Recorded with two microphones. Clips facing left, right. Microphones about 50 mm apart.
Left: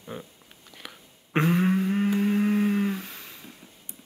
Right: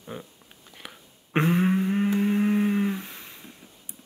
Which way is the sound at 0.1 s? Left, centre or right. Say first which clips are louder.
Even; centre.